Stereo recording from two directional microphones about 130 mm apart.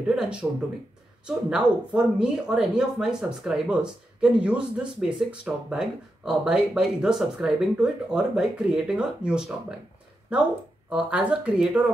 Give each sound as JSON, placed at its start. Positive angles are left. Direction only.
{"t": 0.0, "sound": "speech", "side_deg": -5}